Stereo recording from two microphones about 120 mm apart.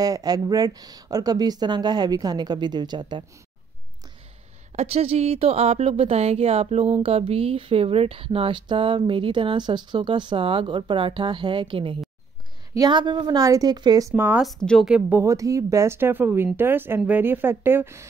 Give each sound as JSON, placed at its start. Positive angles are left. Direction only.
{"t": 0.0, "sound": "speech", "side_deg": -30}
{"t": 4.7, "sound": "speech", "side_deg": -60}
{"t": 14.1, "sound": "a woman's voice", "side_deg": -15}
{"t": 14.4, "sound": "a woman's voice", "side_deg": 5}
{"t": 14.9, "sound": "a woman's voice", "side_deg": -15}
{"t": 15.2, "sound": "a woman's voice", "side_deg": -25}